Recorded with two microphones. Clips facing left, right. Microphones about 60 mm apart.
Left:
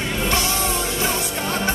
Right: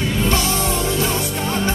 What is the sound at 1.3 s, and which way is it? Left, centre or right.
Music, left.